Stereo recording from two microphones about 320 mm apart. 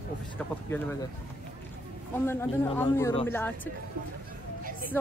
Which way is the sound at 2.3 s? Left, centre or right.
Centre.